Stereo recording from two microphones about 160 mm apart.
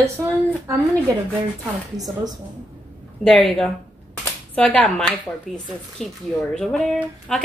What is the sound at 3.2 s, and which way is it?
A woman's voice, 5° left (ahead or behind).